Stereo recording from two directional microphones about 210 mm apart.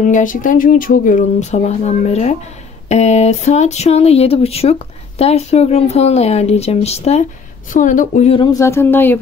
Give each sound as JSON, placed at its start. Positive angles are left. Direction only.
{"t": 0.0, "sound": "speech", "side_deg": 35}
{"t": 8.4, "sound": "speech", "side_deg": 15}